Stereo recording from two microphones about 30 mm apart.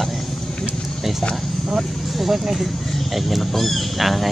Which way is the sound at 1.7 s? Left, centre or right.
Centre.